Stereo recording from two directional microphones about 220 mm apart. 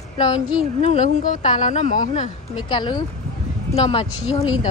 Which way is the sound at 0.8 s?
30° left (ahead or behind).